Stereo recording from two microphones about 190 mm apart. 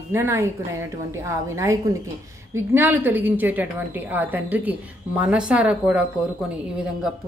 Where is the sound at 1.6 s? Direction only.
15° right (ahead or behind).